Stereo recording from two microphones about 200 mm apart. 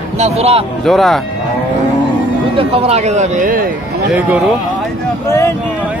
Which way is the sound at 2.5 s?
30° right (ahead or behind).